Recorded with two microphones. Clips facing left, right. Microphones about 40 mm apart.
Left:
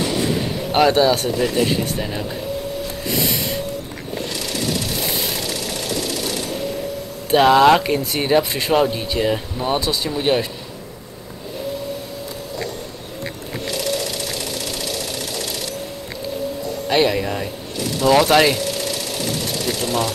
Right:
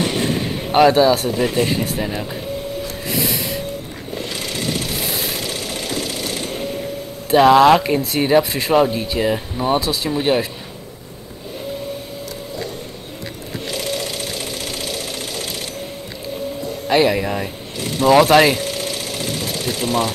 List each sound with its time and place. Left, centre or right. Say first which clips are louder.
0.7 s speech: right 3 dB; centre
1.3 s speech: even; centre
3.1 s snort: even; centre
4.3 s a sound: even; right
5.5 s engine: even; right
7.2 s speech: right 2 dB; centre
17.1 s speech: right 1 dB; centre
18.6 s a sound: even; right
19.5 s speech: right 3 dB; right